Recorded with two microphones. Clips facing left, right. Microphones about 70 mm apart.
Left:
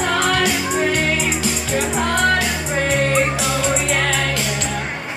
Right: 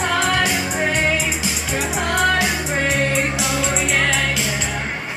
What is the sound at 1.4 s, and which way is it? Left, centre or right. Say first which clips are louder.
Music: left 3 dB; centre.